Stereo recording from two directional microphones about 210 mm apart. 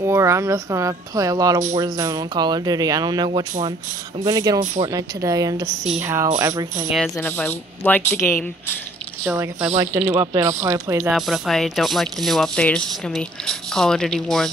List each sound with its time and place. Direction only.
0.0 s speech: 15° right (ahead or behind)
6.9 s speech: 5° left (ahead or behind)
9.8 s speech: 10° right (ahead or behind)
11.1 s a sound: centre (ahead or behind)